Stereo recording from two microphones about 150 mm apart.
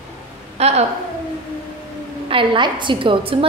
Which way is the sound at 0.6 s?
45° right (ahead or behind).